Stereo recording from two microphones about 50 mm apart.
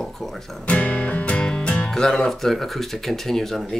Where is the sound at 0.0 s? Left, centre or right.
Centre.